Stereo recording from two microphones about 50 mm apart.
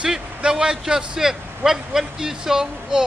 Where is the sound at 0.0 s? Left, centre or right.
Centre.